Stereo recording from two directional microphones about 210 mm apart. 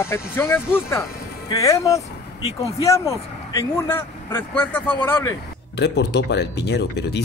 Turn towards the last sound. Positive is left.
turn(degrees=55)  # may be behind; listen again after turning